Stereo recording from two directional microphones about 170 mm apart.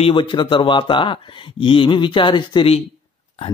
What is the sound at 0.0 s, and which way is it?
Speech, 30° left (ahead or behind).